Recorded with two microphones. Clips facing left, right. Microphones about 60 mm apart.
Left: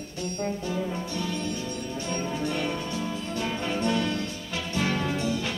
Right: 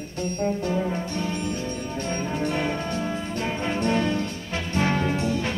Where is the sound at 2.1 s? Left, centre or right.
Right.